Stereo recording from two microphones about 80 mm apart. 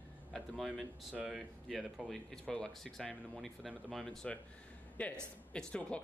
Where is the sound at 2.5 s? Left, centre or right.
Centre.